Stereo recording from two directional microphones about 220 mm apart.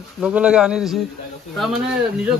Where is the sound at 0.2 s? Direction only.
5° right (ahead or behind).